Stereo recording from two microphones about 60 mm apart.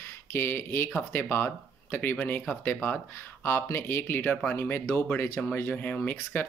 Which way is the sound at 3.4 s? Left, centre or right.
Left.